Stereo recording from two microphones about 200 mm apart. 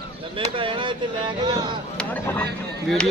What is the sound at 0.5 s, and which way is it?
Speech, 25° right (ahead or behind).